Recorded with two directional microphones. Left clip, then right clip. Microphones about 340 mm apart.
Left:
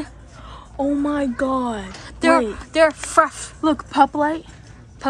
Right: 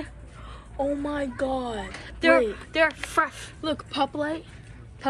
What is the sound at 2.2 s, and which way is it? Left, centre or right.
Speech, centre.